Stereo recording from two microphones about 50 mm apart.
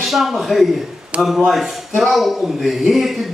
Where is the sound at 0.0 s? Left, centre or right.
Centre.